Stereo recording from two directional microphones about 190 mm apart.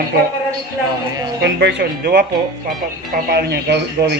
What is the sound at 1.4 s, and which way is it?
Speech, 65° right (ahead or behind).